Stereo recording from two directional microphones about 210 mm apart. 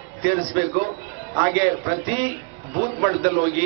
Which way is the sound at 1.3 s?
20° right (ahead or behind).